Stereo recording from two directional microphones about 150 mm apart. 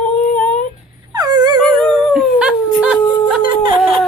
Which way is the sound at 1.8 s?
5° left (ahead or behind).